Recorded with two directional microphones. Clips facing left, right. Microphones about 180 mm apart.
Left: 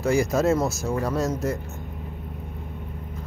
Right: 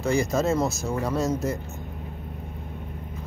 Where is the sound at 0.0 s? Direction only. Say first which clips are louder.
Left 2 dB; 5° left (ahead or behind).